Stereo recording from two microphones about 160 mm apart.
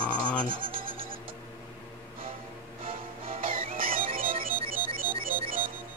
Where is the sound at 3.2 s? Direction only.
60° right (ahead or behind).